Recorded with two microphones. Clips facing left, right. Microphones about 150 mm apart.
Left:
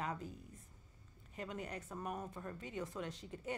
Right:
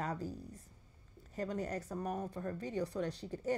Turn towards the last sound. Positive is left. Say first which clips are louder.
# right 7 dB
turn(degrees=-35)  # may be behind; listen again after turning